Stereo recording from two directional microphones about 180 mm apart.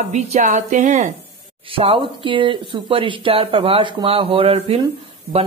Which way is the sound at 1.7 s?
30° right (ahead or behind).